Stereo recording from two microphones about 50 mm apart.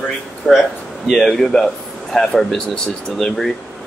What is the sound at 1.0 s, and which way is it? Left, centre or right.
Speech, centre.